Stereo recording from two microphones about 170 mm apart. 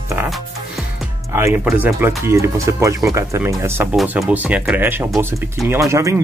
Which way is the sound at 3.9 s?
5° right (ahead or behind).